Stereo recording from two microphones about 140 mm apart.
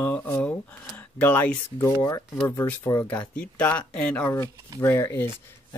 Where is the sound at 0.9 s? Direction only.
10° left (ahead or behind).